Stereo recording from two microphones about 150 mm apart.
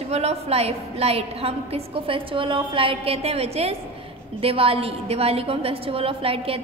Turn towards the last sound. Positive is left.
turn(degrees=-40)  # may be behind; listen again after turning